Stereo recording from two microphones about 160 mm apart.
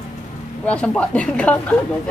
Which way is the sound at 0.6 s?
5° left (ahead or behind).